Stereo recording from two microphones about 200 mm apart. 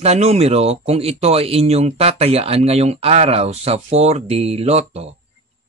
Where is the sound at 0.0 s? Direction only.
30° right (ahead or behind).